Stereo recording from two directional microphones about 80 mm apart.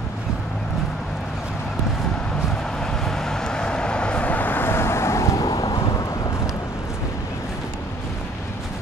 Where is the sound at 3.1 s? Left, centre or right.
Centre; by 6.5 s left.